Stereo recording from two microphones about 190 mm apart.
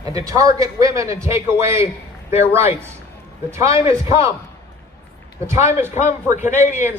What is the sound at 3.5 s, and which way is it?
Speech, 15° right (ahead or behind).